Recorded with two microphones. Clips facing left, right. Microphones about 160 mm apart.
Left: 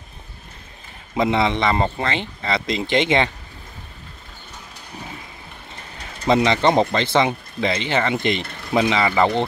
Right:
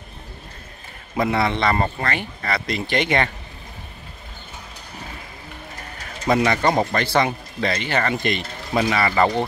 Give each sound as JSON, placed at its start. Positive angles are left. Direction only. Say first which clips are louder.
{"t": 1.1, "sound": "speech", "louder": "left 2 dB", "side_deg": 20}
{"t": 6.2, "sound": "speech", "louder": "left 2 dB", "side_deg": 20}